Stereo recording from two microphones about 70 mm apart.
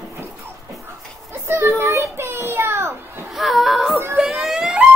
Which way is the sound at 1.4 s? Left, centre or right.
Right.